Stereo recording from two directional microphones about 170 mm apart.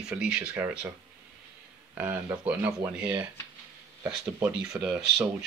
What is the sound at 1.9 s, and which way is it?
Speech, 10° right (ahead or behind).